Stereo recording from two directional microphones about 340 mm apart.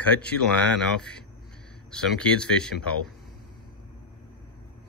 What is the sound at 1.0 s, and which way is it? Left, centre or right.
Speech, centre.